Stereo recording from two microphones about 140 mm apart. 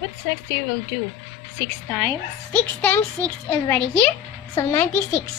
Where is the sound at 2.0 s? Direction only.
10° left (ahead or behind).